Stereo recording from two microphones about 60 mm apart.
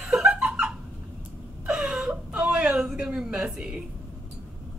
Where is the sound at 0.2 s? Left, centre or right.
Centre.